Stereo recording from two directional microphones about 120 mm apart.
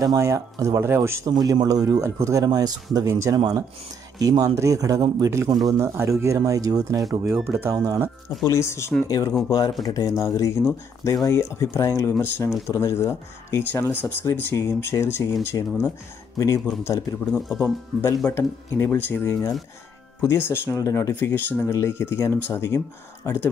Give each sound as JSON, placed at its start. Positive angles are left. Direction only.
{"t": 0.0, "sound": "speech", "side_deg": -30}
{"t": 1.3, "sound": "speech", "side_deg": -35}
{"t": 8.5, "sound": "speech", "side_deg": 25}
{"t": 17.3, "sound": "speech", "side_deg": 0}
{"t": 18.2, "sound": "speech", "side_deg": 20}